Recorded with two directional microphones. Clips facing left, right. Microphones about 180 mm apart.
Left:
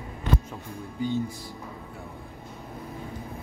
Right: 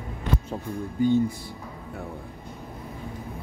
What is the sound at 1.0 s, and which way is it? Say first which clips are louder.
Music: right 7 dB; 50° right (ahead or behind).